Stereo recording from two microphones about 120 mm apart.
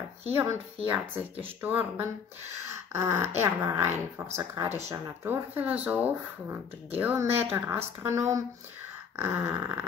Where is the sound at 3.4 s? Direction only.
20° right (ahead or behind).